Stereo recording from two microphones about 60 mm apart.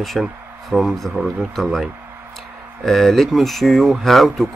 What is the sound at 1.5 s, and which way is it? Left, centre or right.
Speech, centre.